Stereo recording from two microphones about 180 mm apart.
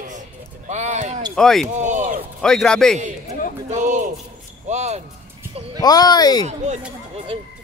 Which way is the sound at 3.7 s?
45° right (ahead or behind).